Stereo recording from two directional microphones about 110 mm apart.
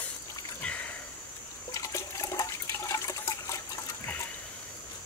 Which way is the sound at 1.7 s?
30° left (ahead or behind).